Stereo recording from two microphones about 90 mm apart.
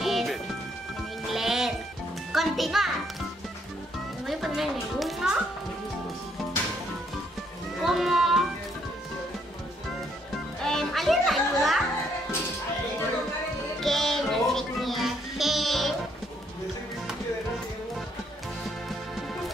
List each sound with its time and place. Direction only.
0.0 s music: centre (ahead or behind)
4.3 s music: 5° right (ahead or behind)
7.8 s children playing: 5° right (ahead or behind)
10.6 s music: 5° left (ahead or behind)
13.7 s music: 5° left (ahead or behind)